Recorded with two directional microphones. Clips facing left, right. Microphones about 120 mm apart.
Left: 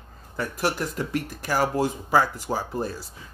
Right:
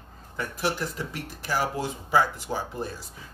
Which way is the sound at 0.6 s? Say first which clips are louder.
Left 2 dB; 45° left (ahead or behind).